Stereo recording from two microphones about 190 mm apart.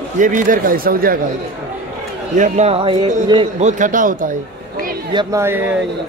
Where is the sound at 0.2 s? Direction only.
45° right (ahead or behind).